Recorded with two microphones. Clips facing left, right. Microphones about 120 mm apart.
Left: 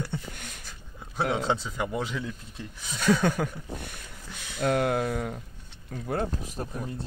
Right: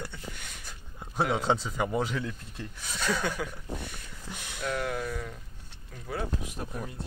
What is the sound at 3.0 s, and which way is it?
Speech, 50° left (ahead or behind).